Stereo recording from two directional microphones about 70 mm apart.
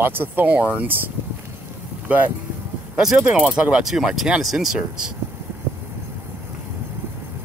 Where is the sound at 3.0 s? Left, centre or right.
Centre.